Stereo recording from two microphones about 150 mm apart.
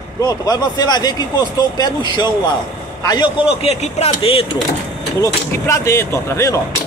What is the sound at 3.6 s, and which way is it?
Speech, 45° left (ahead or behind).